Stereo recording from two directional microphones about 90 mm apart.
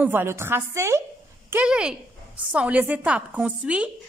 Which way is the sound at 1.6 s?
10° right (ahead or behind).